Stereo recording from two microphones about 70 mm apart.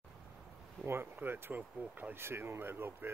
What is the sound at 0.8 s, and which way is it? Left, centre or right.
Speech, right.